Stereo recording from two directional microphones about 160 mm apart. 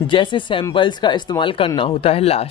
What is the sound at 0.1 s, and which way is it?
Speech, 30° left (ahead or behind).